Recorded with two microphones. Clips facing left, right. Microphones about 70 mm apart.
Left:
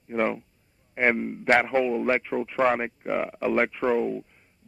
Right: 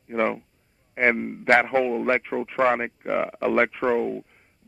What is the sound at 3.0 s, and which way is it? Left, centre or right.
A man's voice, right.